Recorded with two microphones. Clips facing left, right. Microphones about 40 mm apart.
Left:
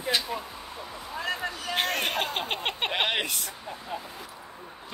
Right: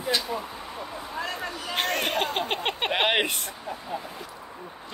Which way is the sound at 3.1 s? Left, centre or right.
Right.